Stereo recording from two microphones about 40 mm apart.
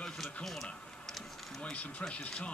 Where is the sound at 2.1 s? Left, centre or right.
Left.